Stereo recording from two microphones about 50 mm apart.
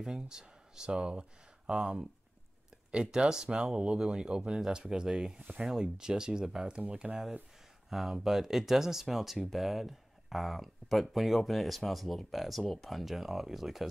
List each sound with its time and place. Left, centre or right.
0.0 s speech: centre